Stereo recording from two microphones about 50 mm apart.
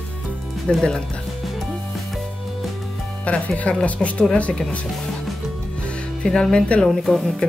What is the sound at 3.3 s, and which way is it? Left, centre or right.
Speech, left.